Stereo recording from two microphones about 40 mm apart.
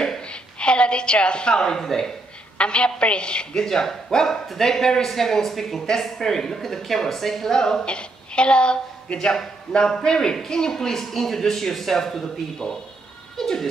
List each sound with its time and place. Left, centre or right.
0.3 s a sound: left
1.8 s a woman's voice: centre
2.5 s a woman's voice: left
13.4 s goat: centre